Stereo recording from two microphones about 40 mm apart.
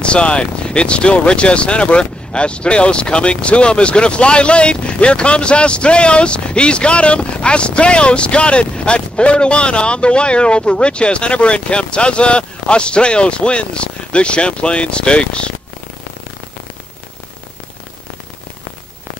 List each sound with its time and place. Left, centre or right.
0.0 s speech: left